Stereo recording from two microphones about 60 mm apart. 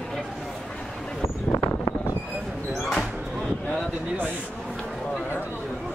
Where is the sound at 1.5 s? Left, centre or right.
Left.